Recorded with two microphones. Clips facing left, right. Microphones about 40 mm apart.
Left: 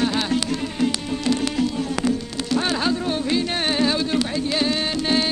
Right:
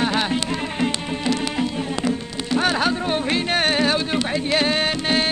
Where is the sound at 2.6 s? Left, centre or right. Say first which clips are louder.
Right 3 dB; right.